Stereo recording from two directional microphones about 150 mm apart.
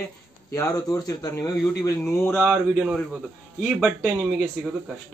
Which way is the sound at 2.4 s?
10° right (ahead or behind).